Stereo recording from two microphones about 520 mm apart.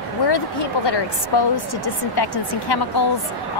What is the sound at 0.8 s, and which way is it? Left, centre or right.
A woman's voice, left.